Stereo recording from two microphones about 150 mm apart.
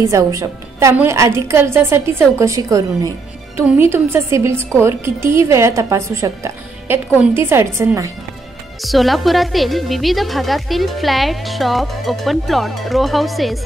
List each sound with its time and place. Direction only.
0.0 s a woman's voice: 20° right (ahead or behind)
8.8 s a woman's voice: centre (ahead or behind)